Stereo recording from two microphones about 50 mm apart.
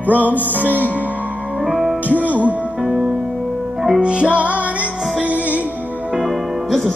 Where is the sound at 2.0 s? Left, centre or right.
Right.